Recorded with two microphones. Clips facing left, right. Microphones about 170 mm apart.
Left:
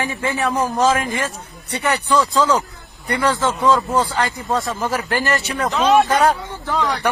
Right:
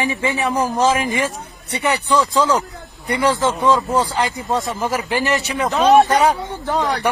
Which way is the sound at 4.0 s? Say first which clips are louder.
Even; 20° right (ahead or behind).